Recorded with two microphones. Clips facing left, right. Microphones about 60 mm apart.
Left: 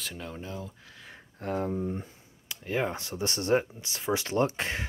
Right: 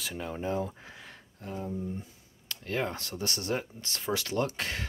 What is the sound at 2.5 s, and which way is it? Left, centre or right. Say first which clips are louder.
Speech: left 2 dB; centre.